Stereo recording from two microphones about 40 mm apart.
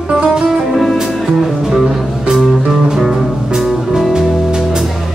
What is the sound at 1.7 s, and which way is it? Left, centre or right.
Music, centre.